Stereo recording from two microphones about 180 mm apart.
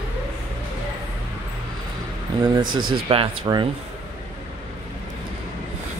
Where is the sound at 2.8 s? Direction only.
30° right (ahead or behind).